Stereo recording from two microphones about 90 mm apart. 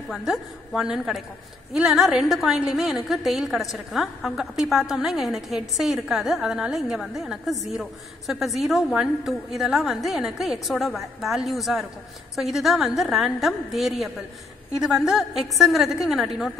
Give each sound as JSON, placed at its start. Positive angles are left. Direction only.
{"t": 0.1, "sound": "a woman's voice", "side_deg": -5}